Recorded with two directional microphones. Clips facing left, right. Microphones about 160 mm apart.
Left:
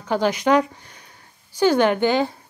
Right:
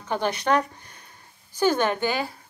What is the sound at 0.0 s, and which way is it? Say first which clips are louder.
Speech: left 5 dB; 10° left (ahead or behind).